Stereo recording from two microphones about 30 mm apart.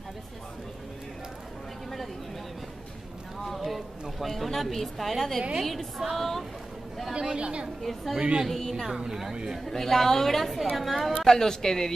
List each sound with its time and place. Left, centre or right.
3.4 s a sound: centre
4.2 s a woman's voice: centre
7.2 s a woman's voice: right
7.8 s a woman's voice: centre
8.2 s a woman's voice: right
8.5 s a woman's voice: centre
9.1 s speech: centre
9.7 s a woman's voice: centre
11.2 s a woman's voice: centre